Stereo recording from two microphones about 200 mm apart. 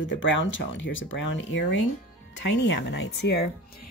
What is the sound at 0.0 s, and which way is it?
Speech, 70° left (ahead or behind).